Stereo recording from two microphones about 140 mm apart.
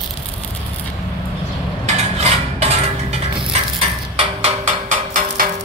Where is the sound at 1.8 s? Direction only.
50° right (ahead or behind).